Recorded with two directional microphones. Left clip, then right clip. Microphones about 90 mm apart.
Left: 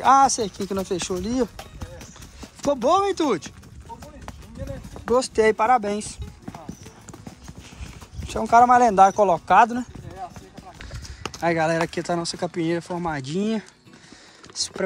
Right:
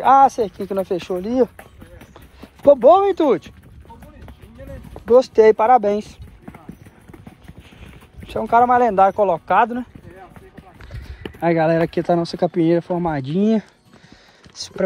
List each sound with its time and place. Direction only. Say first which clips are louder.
0.0 s speech: right 4 dB; 15° left (ahead or behind)
5.0 s speech: right 7 dB; 20° left (ahead or behind)
8.4 s speech: right 1 dB; 30° left (ahead or behind)
11.5 s speech: right 7 dB; 25° left (ahead or behind)
14.5 s speech: right 4 dB; 30° left (ahead or behind)